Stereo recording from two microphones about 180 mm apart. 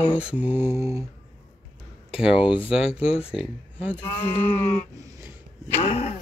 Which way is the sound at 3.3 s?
10° right (ahead or behind).